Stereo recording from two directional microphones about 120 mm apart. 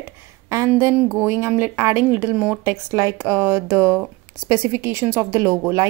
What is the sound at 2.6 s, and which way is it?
Speech, 25° right (ahead or behind).